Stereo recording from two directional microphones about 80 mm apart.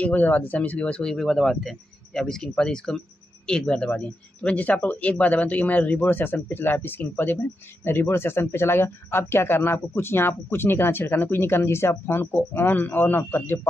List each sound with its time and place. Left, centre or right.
0.0 s speech: left